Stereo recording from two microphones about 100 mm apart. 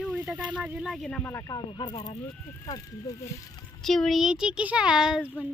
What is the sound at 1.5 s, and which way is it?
Speech, 50° left (ahead or behind).